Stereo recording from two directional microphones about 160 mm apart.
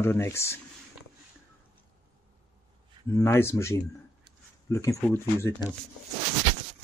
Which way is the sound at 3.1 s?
15° left (ahead or behind).